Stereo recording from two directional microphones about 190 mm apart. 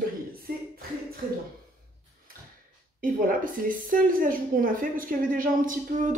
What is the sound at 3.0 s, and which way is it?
A woman's voice, 45° right (ahead or behind).